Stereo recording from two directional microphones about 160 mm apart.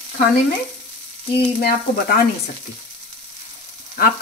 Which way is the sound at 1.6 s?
70° left (ahead or behind).